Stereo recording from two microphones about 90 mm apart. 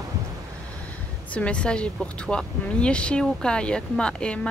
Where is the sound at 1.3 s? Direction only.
15° left (ahead or behind).